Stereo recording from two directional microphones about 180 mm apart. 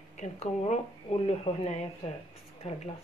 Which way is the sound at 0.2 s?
40° left (ahead or behind).